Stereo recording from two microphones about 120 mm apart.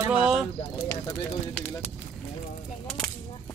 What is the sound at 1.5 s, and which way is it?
Speech, 10° left (ahead or behind).